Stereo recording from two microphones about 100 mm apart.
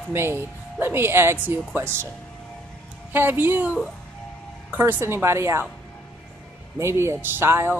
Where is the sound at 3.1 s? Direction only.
20° right (ahead or behind).